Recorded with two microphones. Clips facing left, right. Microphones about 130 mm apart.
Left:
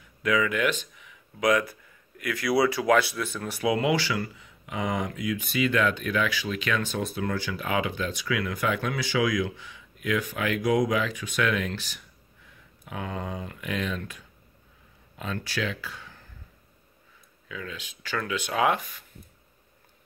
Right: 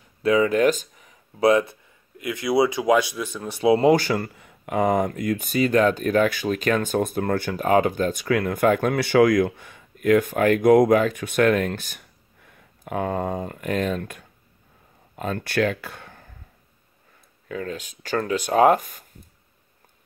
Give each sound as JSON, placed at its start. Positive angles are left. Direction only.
{"t": 0.2, "sound": "speech", "side_deg": -35}
{"t": 3.9, "sound": "speech", "side_deg": -45}
{"t": 17.5, "sound": "speech", "side_deg": -45}